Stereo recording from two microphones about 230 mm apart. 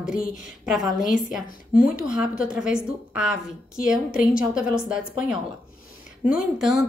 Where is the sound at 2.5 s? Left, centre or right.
Centre.